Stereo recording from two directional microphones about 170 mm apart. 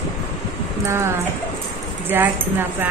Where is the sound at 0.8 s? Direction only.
15° right (ahead or behind).